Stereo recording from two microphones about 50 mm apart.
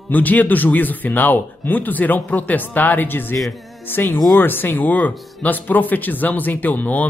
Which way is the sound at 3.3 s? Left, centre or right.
Centre.